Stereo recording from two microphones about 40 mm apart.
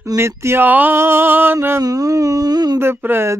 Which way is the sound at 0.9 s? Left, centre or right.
Right.